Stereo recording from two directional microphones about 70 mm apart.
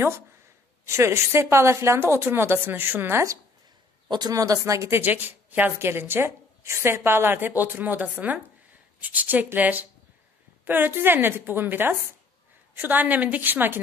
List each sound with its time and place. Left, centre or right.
0.8 s a woman's voice: right
4.1 s speech: right
5.0 s a woman's voice: right